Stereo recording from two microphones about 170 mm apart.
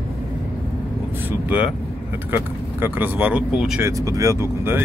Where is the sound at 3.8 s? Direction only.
20° right (ahead or behind).